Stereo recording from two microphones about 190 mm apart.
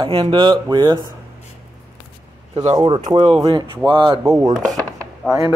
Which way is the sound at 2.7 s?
25° right (ahead or behind).